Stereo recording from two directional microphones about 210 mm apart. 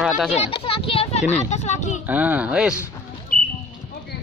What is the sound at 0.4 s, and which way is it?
A child's voice, 25° left (ahead or behind).